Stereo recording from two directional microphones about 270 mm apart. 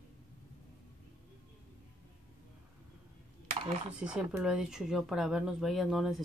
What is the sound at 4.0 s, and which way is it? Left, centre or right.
Speech, centre.